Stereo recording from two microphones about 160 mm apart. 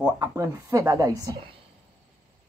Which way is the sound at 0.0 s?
20° right (ahead or behind).